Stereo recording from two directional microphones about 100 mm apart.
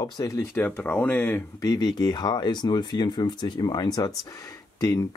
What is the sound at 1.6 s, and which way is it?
Speech, 40° left (ahead or behind).